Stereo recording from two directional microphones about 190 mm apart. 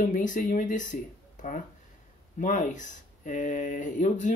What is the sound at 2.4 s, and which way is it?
Speech, 40° left (ahead or behind).